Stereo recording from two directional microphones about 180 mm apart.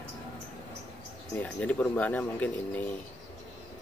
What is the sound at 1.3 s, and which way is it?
Speech, 10° left (ahead or behind).